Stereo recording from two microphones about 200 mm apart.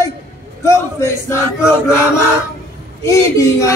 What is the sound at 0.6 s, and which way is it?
Speech, 15° left (ahead or behind).